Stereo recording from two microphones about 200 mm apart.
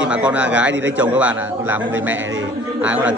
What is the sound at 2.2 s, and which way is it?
Speech, 70° right (ahead or behind).